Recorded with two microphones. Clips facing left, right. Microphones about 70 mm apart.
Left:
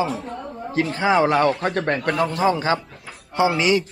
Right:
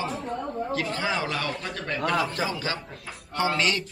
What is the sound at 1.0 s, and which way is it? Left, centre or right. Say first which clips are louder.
A man's voice: left 15 dB; left.